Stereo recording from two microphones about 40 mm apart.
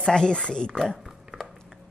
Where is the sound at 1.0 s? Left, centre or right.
Centre.